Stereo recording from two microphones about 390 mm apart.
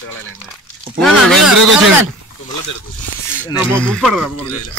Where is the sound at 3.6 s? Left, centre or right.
Centre.